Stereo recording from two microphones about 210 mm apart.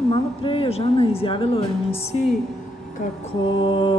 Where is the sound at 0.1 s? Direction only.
25° left (ahead or behind).